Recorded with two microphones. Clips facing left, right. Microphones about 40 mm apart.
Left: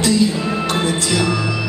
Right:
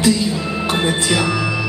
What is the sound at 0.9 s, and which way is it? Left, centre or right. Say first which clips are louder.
Music: right 1 dB; right.